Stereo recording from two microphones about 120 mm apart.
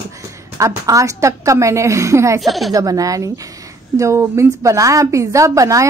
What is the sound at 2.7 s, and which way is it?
A woman's voice, 30° right (ahead or behind).